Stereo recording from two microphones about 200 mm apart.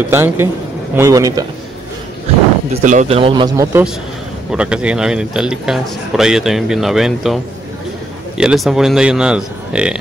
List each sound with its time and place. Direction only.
0.1 s a man's voice: 10° right (ahead or behind)
2.8 s speech: 40° right (ahead or behind); by 3.8 s 15° right (ahead or behind)
4.5 s speech: 5° right (ahead or behind)
8.4 s speech: centre (ahead or behind)